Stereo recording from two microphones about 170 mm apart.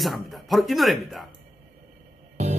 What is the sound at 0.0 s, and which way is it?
Speech, centre (ahead or behind).